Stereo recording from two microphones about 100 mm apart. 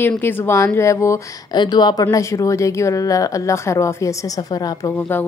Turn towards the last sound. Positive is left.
turn(degrees=20)  # may be behind; listen again after turning